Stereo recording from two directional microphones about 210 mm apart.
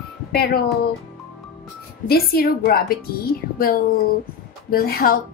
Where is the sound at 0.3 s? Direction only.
50° left (ahead or behind).